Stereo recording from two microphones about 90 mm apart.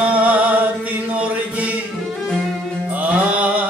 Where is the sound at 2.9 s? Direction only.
15° right (ahead or behind).